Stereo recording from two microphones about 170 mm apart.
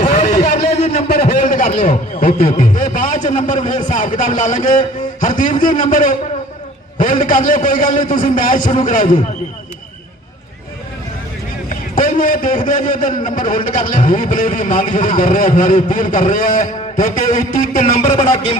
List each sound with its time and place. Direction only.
0.0 s a sound: 45° left (ahead or behind)
2.6 s a man's voice: 50° left (ahead or behind)
12.0 s a man's voice: 50° left (ahead or behind)
17.3 s a man's voice: 45° left (ahead or behind)
18.1 s speech: 30° left (ahead or behind)